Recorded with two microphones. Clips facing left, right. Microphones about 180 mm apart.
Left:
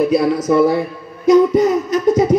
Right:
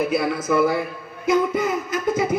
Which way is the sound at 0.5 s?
30° left (ahead or behind).